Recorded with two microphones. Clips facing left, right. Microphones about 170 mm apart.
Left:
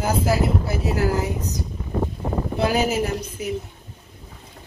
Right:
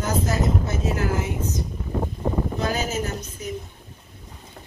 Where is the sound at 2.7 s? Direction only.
10° left (ahead or behind).